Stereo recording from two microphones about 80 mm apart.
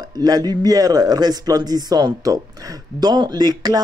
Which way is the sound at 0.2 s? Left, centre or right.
Right.